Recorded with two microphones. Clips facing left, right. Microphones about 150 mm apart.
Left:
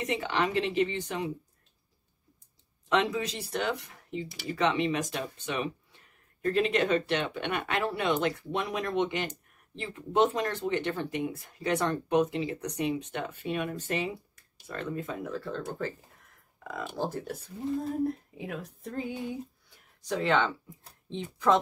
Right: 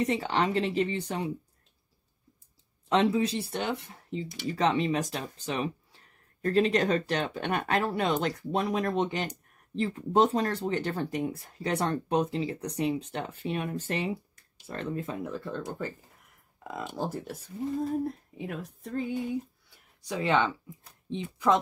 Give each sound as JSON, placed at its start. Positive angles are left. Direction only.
{"t": 0.0, "sound": "speech", "side_deg": -35}
{"t": 2.9, "sound": "speech", "side_deg": -30}
{"t": 4.6, "sound": "speech", "side_deg": -35}
{"t": 15.3, "sound": "speech", "side_deg": -15}
{"t": 17.0, "sound": "speech", "side_deg": -5}
{"t": 19.7, "sound": "a sound", "side_deg": -10}